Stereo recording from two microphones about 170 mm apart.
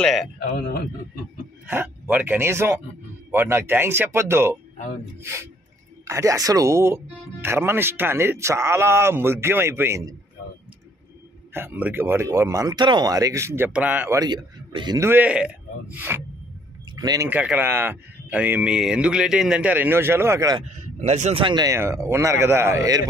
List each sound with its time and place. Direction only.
0.0 s a man's voice: centre (ahead or behind)
1.7 s speech: 10° right (ahead or behind)
11.5 s speech: 10° right (ahead or behind)
14.2 s a man's voice: 25° right (ahead or behind)
15.0 s speech: 10° right (ahead or behind)
16.9 s speech: 20° right (ahead or behind)
17.3 s speech: 10° right (ahead or behind)
20.6 s speech: 40° right (ahead or behind); by 23.0 s 20° right (ahead or behind)